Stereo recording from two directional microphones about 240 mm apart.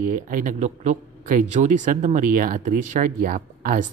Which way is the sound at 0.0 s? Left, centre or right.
Right.